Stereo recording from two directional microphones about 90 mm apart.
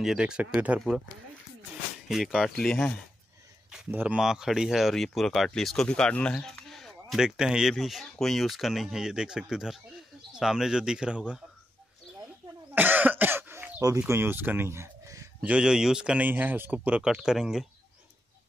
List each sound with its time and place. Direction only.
0.0 s speech: 5° right (ahead or behind)
0.7 s speech: 5° right (ahead or behind)
2.0 s speech: 5° right (ahead or behind)
3.9 s speech: 20° right (ahead or behind)
4.2 s speech: 5° right (ahead or behind)
6.7 s a sound: 5° left (ahead or behind)
7.7 s speech: centre (ahead or behind)
12.7 s cough: 20° right (ahead or behind)
13.7 s speech: 40° right (ahead or behind)
15.4 s speech: 10° right (ahead or behind)